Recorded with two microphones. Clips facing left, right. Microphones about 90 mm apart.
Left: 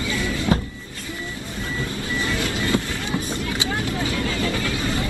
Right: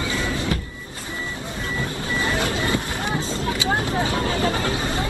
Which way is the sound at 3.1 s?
30° right (ahead or behind).